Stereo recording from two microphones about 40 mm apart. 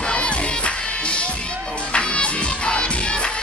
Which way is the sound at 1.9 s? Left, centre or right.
Left.